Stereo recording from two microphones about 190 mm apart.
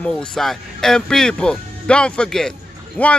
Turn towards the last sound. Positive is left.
turn(degrees=10)  # may be behind; listen again after turning